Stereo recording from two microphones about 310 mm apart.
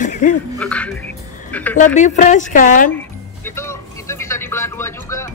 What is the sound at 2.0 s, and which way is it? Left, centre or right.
Speech, left.